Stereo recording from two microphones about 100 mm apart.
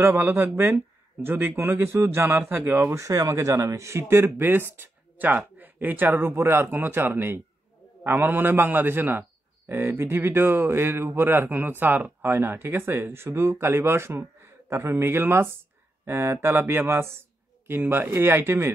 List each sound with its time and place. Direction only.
0.0 s speech: 20° right (ahead or behind)
3.0 s speech: 35° right (ahead or behind)